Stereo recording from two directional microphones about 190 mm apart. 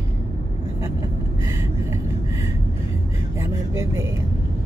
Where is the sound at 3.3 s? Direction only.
15° right (ahead or behind).